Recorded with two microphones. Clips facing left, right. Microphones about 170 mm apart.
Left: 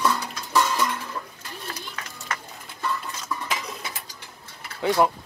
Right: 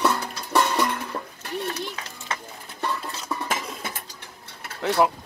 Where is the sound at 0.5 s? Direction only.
65° right (ahead or behind).